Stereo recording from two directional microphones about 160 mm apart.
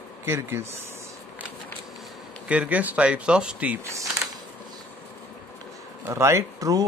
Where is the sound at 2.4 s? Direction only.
10° right (ahead or behind).